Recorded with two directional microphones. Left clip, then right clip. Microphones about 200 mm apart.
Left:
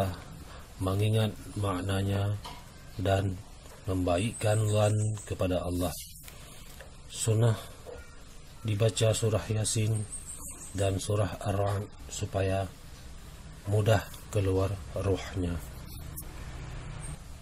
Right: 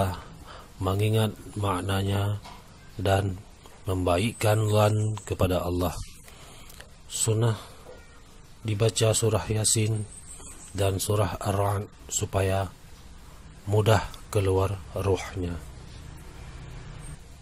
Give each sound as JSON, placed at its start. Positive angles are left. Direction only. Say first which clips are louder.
{"t": 0.8, "sound": "speech", "louder": "right 4 dB", "side_deg": -20}
{"t": 7.2, "sound": "speech", "louder": "right 2 dB", "side_deg": -15}
{"t": 13.7, "sound": "speech", "louder": "right 5 dB", "side_deg": -20}